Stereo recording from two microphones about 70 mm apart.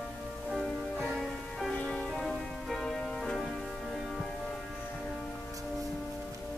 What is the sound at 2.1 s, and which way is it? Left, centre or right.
Music, centre.